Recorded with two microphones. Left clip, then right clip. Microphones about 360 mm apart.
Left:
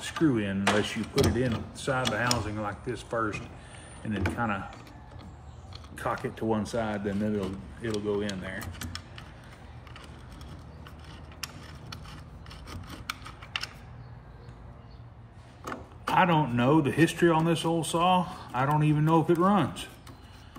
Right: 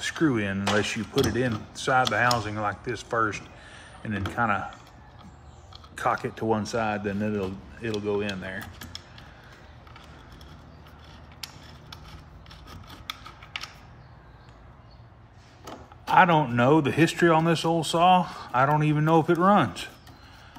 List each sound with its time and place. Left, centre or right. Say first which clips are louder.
0.0 s speech: right 2 dB; right
5.9 s speech: right 5 dB; right
11.4 s mechanisms: left 1 dB; right
16.2 s speech: right 5 dB; right